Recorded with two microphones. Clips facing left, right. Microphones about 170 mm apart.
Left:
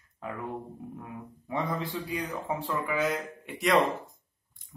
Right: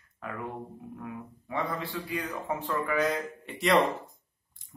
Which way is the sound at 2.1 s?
15° left (ahead or behind).